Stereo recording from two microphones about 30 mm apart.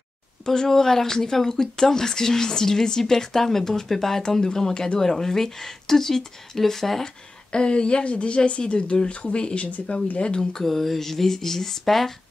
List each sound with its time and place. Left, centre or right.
0.7 s a woman's voice: centre
7.5 s speech: left
9.2 s speech: left
10.6 s a woman's voice: centre